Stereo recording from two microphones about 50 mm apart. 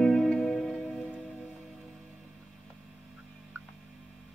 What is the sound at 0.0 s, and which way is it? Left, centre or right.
Music, centre.